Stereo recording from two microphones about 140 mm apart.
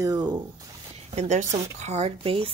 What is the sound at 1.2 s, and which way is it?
Speech, 55° right (ahead or behind).